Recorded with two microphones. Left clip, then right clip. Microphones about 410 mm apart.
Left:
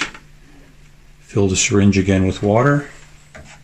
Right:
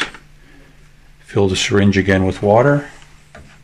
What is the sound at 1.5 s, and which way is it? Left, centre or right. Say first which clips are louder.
Speech: right 1 dB; centre.